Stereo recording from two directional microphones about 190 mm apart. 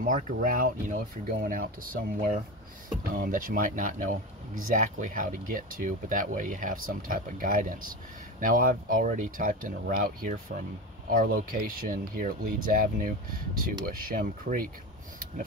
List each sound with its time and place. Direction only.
0.0 s speech: 45° right (ahead or behind)